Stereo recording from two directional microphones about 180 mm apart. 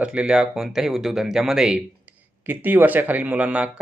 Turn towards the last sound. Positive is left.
turn(degrees=-5)  # may be behind; listen again after turning